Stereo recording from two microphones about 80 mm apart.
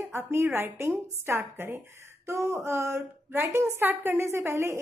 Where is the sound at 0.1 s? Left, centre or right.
Right.